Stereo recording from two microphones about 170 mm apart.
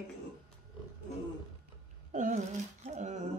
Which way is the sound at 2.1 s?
45° right (ahead or behind).